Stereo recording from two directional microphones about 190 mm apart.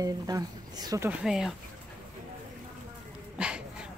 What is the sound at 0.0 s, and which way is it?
Speech, 20° right (ahead or behind).